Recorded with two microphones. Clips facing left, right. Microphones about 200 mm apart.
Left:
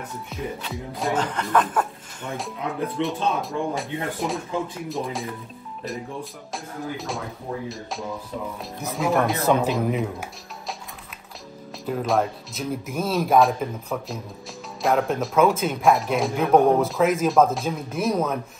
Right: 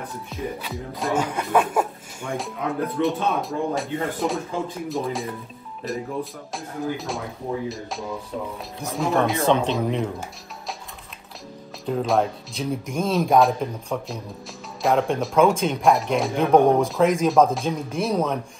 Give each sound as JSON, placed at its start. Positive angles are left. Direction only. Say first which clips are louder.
{"t": 0.3, "sound": "speech", "louder": "right 1 dB", "side_deg": 0}
{"t": 3.0, "sound": "speech", "louder": "right 2 dB", "side_deg": 0}
{"t": 11.8, "sound": "speech", "louder": "right 1 dB", "side_deg": 0}